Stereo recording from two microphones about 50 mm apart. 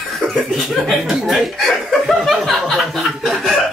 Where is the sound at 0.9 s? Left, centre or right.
Centre.